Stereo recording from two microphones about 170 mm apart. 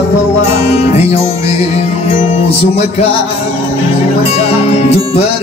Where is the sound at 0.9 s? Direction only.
35° left (ahead or behind).